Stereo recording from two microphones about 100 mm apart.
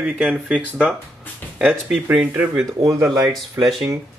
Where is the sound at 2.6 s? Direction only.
35° right (ahead or behind).